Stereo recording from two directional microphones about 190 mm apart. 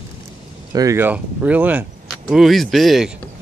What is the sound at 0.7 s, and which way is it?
Speech, 15° right (ahead or behind).